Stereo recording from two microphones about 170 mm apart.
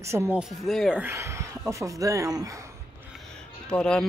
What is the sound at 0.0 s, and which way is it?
Speech, 15° right (ahead or behind).